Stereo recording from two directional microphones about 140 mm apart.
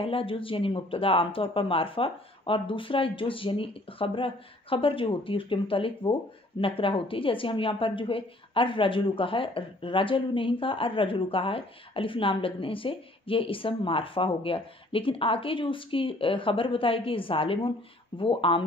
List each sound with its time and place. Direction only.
0.0 s a woman's voice: 40° left (ahead or behind)